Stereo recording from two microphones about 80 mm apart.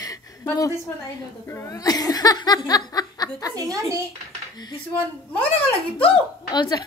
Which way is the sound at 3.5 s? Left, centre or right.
Right.